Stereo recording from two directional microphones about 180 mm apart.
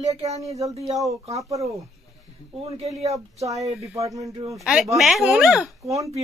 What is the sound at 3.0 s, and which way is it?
Speech, 20° right (ahead or behind).